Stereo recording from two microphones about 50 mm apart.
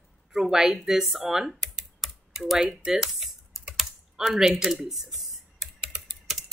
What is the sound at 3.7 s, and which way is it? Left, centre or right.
Typing, centre.